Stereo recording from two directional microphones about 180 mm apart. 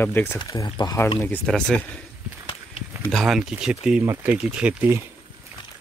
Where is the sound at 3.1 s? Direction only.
Centre (ahead or behind).